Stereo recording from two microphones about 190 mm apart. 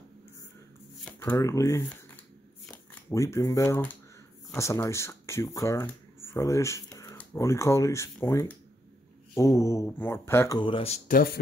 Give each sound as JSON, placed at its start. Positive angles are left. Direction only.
{"t": 1.0, "sound": "speech", "side_deg": 10}
{"t": 10.6, "sound": "speech", "side_deg": 30}
{"t": 11.1, "sound": "speech", "side_deg": 50}